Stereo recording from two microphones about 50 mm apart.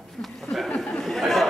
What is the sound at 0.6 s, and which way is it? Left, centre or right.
Speech, centre.